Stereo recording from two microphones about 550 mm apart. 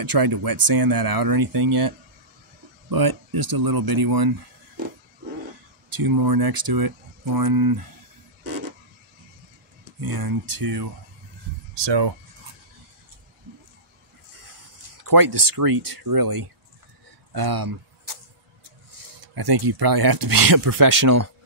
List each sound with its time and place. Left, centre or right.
0.0 s speech: right
5.9 s speech: right
9.9 s speech: right
15.0 s speech: right
17.3 s a sound: right
19.3 s speech: right